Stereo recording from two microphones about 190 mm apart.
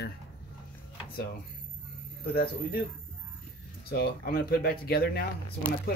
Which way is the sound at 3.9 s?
50° left (ahead or behind).